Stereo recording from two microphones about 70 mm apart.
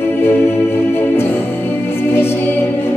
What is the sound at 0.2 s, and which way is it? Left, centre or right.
Music, left.